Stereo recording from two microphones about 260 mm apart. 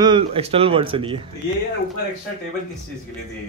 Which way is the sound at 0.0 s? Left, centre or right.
Centre.